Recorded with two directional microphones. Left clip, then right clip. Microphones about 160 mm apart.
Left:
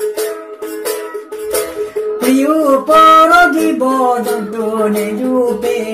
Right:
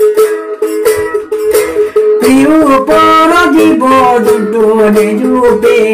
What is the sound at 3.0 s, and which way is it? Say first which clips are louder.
Music: left 2 dB; 30° left (ahead or behind).